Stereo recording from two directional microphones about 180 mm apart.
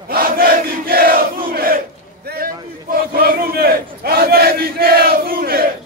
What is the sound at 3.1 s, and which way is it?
Battle cry, 55° right (ahead or behind).